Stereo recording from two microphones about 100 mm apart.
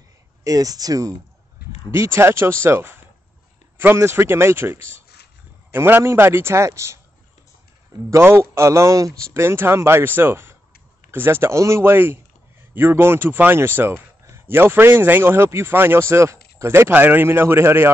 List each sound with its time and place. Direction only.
0.4 s speech: 35° right (ahead or behind)
1.9 s a man's voice: 25° right (ahead or behind)
8.1 s a man's voice: 25° right (ahead or behind)